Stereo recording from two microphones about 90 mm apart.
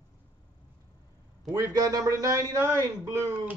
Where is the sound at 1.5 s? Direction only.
40° right (ahead or behind).